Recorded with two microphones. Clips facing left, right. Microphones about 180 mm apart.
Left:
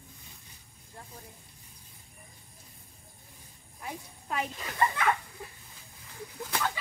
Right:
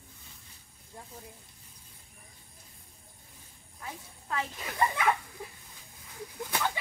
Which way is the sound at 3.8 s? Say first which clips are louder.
Left 3 dB; 15° left (ahead or behind).